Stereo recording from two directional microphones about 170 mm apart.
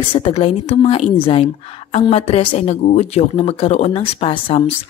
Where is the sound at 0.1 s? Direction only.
35° left (ahead or behind).